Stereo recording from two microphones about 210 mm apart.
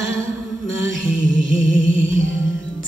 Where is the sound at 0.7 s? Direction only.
60° left (ahead or behind).